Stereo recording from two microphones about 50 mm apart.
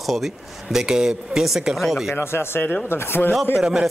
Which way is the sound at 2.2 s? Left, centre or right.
Left.